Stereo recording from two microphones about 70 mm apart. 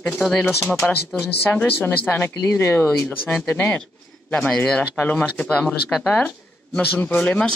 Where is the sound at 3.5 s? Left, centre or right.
Left.